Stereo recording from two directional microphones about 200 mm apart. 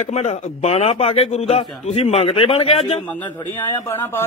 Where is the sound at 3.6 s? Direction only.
10° left (ahead or behind).